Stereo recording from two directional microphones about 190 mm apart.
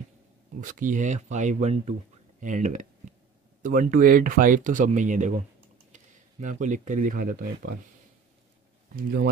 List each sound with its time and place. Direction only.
0.6 s speech: 45° right (ahead or behind)
8.9 s speech: 50° right (ahead or behind)